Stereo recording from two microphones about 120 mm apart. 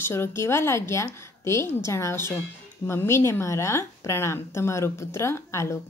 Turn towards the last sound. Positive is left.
turn(degrees=25)  # may be behind; listen again after turning